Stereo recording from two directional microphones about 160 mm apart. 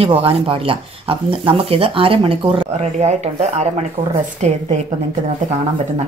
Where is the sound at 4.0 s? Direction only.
60° right (ahead or behind).